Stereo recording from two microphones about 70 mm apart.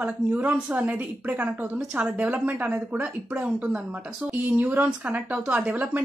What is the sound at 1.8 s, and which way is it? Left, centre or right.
Speech, centre.